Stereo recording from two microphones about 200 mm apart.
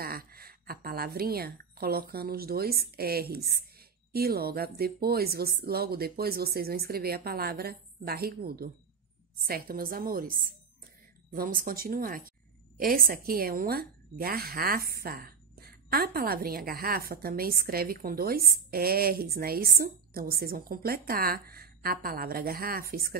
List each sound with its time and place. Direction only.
0.0 s a woman's voice: 50° right (ahead or behind)